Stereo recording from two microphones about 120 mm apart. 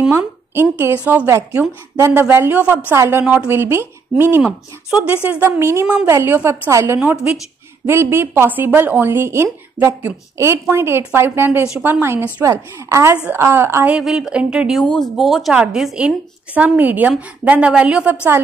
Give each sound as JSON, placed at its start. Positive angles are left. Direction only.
{"t": 0.1, "sound": "a woman's voice", "side_deg": -20}
{"t": 4.4, "sound": "a woman's voice", "side_deg": -10}
{"t": 5.6, "sound": "a woman's voice", "side_deg": -20}
{"t": 7.0, "sound": "a woman's voice", "side_deg": -10}
{"t": 13.9, "sound": "a woman's voice", "side_deg": -5}
{"t": 14.8, "sound": "a woman's voice", "side_deg": 5}